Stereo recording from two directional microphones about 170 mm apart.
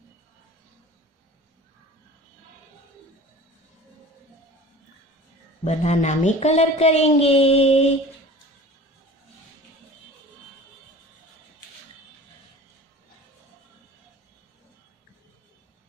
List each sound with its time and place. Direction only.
5.6 s a woman's voice: 40° left (ahead or behind)